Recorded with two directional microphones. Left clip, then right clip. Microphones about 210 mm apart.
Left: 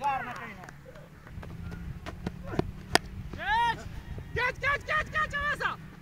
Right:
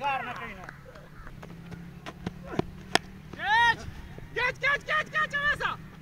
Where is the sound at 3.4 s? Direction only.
35° right (ahead or behind).